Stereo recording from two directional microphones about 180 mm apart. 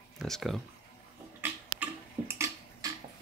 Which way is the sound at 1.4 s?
15° right (ahead or behind).